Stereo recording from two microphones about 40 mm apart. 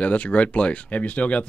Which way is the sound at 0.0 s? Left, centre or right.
Left.